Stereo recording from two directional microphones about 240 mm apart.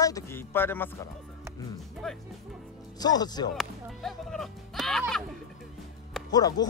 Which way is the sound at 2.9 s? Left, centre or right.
Centre.